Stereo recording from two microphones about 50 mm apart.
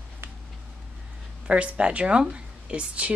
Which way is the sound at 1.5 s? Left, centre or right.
Right.